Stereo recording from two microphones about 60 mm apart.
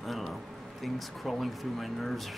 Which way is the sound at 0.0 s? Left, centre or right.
Centre.